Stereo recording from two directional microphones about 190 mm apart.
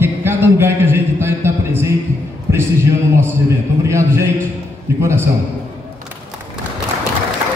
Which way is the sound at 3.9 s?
15° right (ahead or behind).